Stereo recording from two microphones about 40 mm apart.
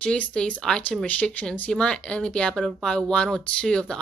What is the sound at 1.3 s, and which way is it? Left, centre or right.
Speech, left.